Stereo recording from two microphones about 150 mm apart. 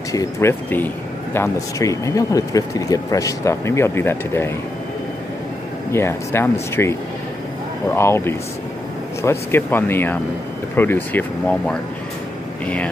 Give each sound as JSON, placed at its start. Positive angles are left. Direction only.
{"t": 0.1, "sound": "speech", "side_deg": 20}
{"t": 5.9, "sound": "speech", "side_deg": 15}